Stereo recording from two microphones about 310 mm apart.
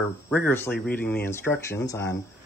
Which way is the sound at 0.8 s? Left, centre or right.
Centre.